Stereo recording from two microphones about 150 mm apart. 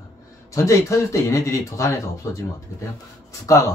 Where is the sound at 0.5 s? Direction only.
20° left (ahead or behind).